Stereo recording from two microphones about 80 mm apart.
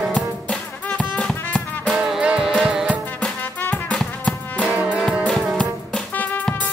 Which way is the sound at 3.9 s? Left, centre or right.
Centre.